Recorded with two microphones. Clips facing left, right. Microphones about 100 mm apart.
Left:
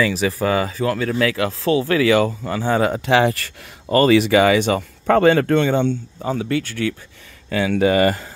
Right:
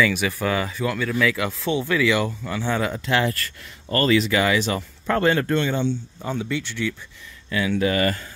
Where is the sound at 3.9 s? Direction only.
70° left (ahead or behind).